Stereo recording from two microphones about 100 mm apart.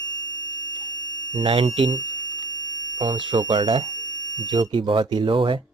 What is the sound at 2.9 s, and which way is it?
Speech, 50° right (ahead or behind).